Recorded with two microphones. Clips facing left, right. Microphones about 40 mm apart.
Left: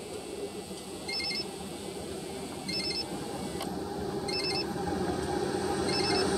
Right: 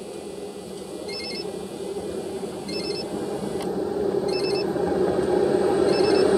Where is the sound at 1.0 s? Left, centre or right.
Centre.